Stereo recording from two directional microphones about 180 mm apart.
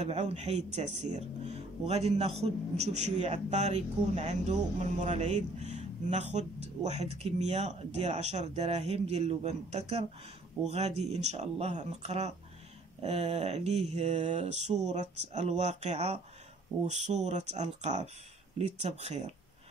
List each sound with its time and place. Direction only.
0.0 s a man's voice: 35° right (ahead or behind)